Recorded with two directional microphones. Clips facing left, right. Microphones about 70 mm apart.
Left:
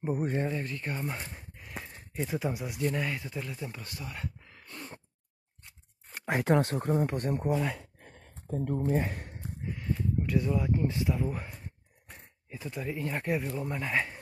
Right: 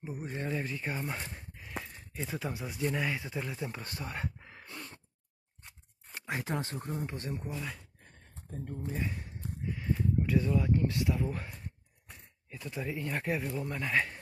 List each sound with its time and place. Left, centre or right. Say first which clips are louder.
0.0 s speech: left 9 dB; left
0.5 s speech: left 1 dB; centre
2.8 s speech: left 1 dB; centre
3.8 s speech: right 1 dB; right
4.4 s dog: right 2 dB; centre
6.5 s speech: left 10 dB; left
7.4 s a sound: left 10 dB; left
8.7 s speech: left 7 dB; left
9.8 s speech: right 1 dB; centre
12.4 s speech: left 2 dB; centre